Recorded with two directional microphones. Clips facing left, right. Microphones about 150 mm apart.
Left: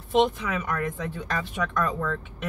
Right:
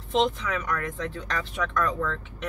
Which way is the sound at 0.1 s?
5° left (ahead or behind).